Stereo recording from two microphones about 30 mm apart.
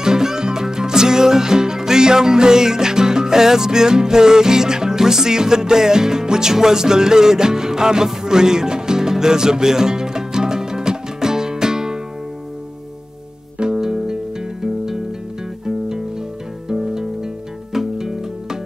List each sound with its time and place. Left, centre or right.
0.0 s music: centre
13.7 s music: centre
16.6 s music: centre